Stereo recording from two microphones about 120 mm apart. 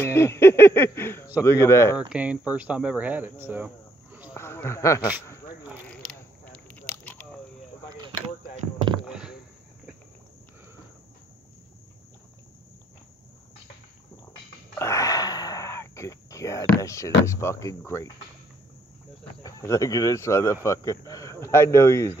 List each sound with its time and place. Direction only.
0.0 s speech: 20° left (ahead or behind)
2.0 s speech: 10° right (ahead or behind)
4.4 s speech: 20° left (ahead or behind)
5.9 s biting: 10° left (ahead or behind)
9.0 s a sound: 5° right (ahead or behind)
14.8 s a sound: 25° left (ahead or behind)
19.4 s speech: 25° left (ahead or behind)